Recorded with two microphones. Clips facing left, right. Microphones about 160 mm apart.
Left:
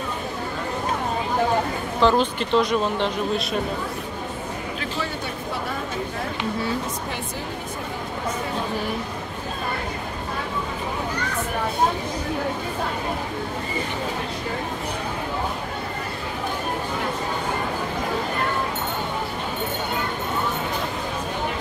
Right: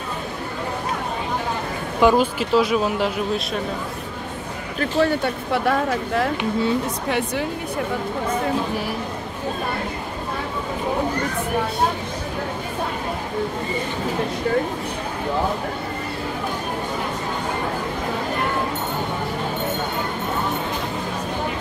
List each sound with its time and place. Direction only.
2.0 s speech: 10° right (ahead or behind)
4.7 s speech: 55° right (ahead or behind); by 6.2 s 80° right